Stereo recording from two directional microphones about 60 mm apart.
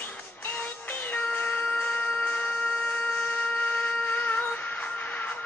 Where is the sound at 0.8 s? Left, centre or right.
Left.